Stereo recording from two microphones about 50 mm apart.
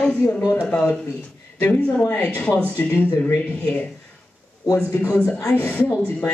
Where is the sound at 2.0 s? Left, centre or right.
Left.